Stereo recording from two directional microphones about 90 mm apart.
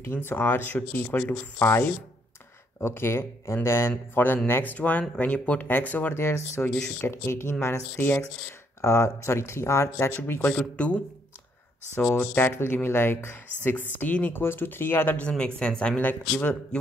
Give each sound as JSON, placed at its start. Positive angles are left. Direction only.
{"t": 0.0, "sound": "speech", "side_deg": 25}
{"t": 2.8, "sound": "speech", "side_deg": 25}
{"t": 6.6, "sound": "speech", "side_deg": 10}
{"t": 7.0, "sound": "speech", "side_deg": 25}
{"t": 10.4, "sound": "speech", "side_deg": 10}
{"t": 12.0, "sound": "speech", "side_deg": 10}
{"t": 12.4, "sound": "speech", "side_deg": 20}